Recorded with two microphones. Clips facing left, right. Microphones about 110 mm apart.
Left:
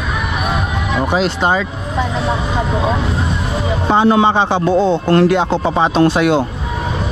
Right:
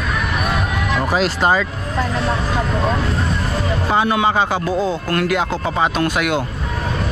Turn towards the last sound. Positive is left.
turn(degrees=30)  # may be behind; listen again after turning